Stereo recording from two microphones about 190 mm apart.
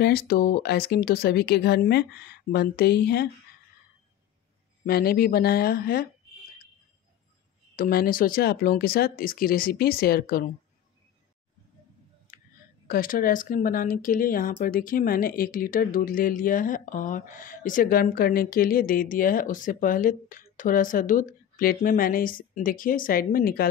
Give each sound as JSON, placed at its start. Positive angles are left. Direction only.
{"t": 0.0, "sound": "speech", "side_deg": 55}
{"t": 4.8, "sound": "speech", "side_deg": 55}
{"t": 7.7, "sound": "speech", "side_deg": 50}
{"t": 12.3, "sound": "a sound", "side_deg": 45}
{"t": 12.8, "sound": "speech", "side_deg": 50}